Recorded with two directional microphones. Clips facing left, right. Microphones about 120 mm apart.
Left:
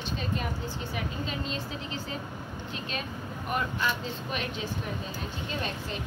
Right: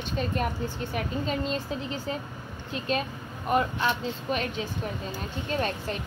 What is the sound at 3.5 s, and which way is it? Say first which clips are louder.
Speech: right 5 dB; 35° right (ahead or behind).